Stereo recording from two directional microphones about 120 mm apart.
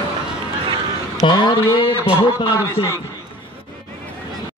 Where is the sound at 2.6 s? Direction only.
25° left (ahead or behind).